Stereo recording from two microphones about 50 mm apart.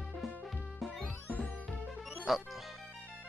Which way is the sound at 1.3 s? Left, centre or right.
Left.